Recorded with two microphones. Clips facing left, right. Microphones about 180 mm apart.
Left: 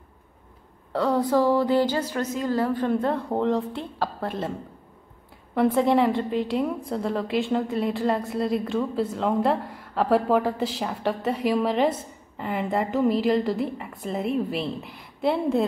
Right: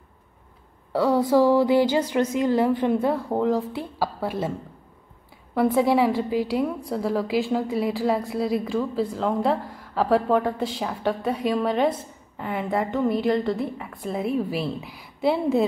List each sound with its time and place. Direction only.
0.9 s a woman's voice: 10° right (ahead or behind)